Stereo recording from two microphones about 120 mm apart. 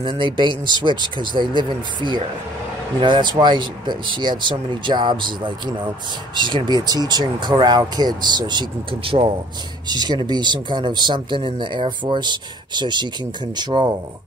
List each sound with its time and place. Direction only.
0.2 s speech: 40° right (ahead or behind)
9.8 s speech: 35° right (ahead or behind)